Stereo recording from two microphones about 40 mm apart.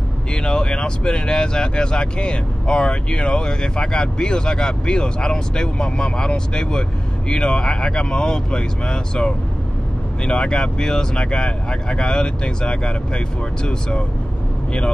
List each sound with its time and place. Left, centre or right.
0.3 s speech: left